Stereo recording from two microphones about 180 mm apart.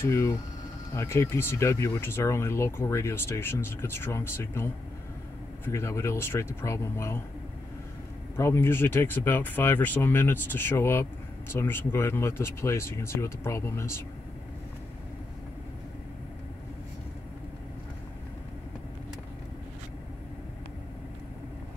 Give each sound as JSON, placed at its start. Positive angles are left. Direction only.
{"t": 0.0, "sound": "speech", "side_deg": 15}
{"t": 5.7, "sound": "speech", "side_deg": 15}
{"t": 8.4, "sound": "speech", "side_deg": 15}